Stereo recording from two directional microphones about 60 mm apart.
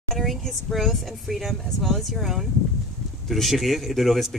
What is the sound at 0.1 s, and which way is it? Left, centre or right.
Speech, centre.